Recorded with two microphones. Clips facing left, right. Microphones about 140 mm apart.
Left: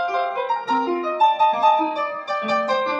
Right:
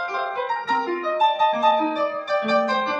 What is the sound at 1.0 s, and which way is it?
Music, 5° left (ahead or behind).